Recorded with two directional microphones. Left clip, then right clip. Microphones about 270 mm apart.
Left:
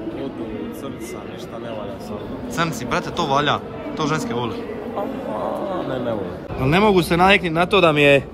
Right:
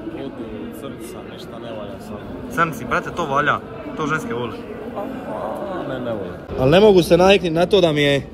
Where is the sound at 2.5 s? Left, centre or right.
Centre.